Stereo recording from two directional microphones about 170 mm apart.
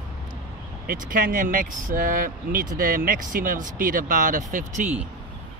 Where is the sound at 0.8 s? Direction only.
55° right (ahead or behind).